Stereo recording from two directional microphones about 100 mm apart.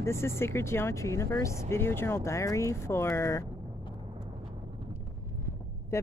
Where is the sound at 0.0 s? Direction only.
25° left (ahead or behind).